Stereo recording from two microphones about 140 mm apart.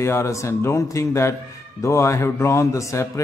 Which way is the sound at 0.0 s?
20° left (ahead or behind).